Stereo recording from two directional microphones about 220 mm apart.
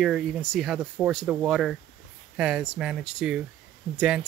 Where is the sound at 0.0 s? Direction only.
Centre (ahead or behind).